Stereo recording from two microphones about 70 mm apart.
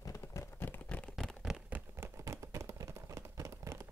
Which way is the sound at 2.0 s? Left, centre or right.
Right.